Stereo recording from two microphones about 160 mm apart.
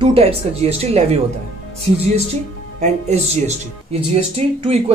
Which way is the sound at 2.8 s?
40° right (ahead or behind).